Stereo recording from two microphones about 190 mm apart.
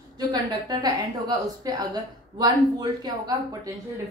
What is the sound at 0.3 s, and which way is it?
A woman's voice, 20° right (ahead or behind).